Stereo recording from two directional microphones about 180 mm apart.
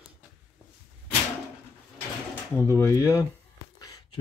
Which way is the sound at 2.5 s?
15° left (ahead or behind).